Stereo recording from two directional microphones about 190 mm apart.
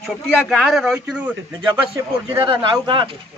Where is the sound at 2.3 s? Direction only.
25° right (ahead or behind).